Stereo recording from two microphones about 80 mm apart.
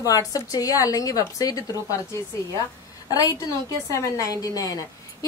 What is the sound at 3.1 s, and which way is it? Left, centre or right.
A woman's voice, left.